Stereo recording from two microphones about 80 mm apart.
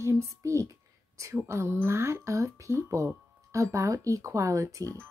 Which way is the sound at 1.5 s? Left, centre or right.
Right.